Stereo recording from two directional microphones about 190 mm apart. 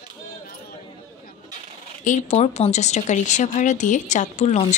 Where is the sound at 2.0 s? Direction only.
40° left (ahead or behind).